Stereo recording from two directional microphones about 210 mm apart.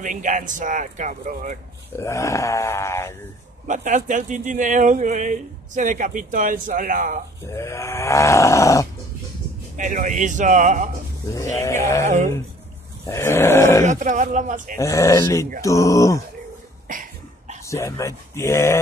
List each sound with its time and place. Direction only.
0.0 s speech: 35° right (ahead or behind)
2.0 s wild animals: 15° left (ahead or behind)
3.6 s speech: 35° right (ahead or behind)
7.5 s wild animals: 15° left (ahead or behind)
9.8 s speech: 35° right (ahead or behind)
11.3 s wild animals: 15° left (ahead or behind)
13.8 s speech: 35° right (ahead or behind)
14.8 s wild animals: 15° left (ahead or behind)
16.8 s cough: 40° right (ahead or behind)
17.6 s wild animals: 15° left (ahead or behind)